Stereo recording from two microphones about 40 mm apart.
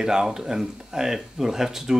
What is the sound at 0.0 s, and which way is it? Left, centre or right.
A man's voice, centre.